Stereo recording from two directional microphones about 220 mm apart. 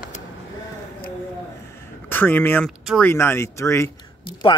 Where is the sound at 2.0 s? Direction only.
10° left (ahead or behind).